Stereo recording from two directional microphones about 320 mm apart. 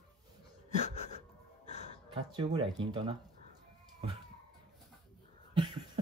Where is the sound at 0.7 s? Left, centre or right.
Left.